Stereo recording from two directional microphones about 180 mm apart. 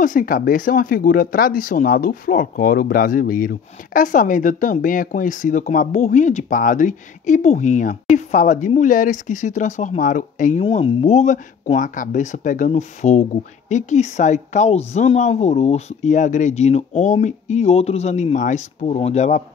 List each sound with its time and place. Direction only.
0.0 s speech: 50° left (ahead or behind)
10.6 s speech: 35° left (ahead or behind)